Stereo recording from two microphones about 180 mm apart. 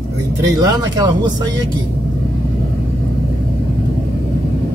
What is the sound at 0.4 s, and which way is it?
Speech, 20° right (ahead or behind).